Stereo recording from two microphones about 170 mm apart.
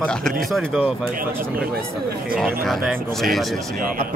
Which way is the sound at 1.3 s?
15° right (ahead or behind).